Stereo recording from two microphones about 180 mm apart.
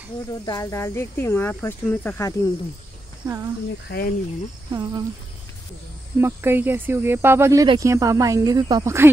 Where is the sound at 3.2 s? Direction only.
15° right (ahead or behind).